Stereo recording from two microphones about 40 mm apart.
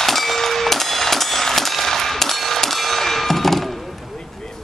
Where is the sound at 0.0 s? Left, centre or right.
Centre.